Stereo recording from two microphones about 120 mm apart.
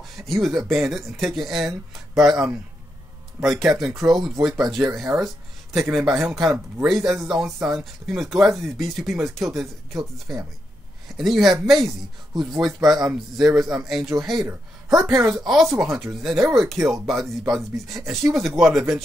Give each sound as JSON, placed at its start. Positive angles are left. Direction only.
{"t": 0.0, "sound": "speech", "side_deg": 0}
{"t": 13.8, "sound": "speech", "side_deg": 0}
{"t": 15.0, "sound": "a woman's voice", "side_deg": -20}
{"t": 15.3, "sound": "speech", "side_deg": 0}